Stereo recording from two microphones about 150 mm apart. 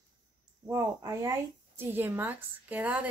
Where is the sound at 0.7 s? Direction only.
20° right (ahead or behind).